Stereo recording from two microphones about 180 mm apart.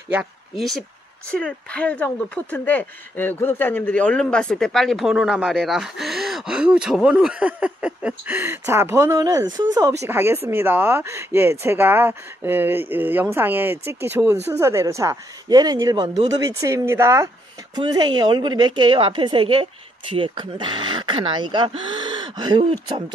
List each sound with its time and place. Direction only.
0.1 s a woman's voice: 5° right (ahead or behind); by 23.1 s 25° right (ahead or behind)